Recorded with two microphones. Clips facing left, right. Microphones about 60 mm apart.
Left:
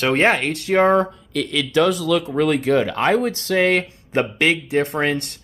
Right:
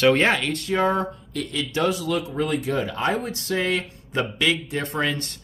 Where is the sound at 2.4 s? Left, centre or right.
Left.